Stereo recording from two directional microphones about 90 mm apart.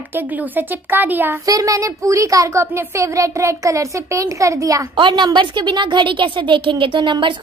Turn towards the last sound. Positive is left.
turn(degrees=-60)  # may be behind; listen again after turning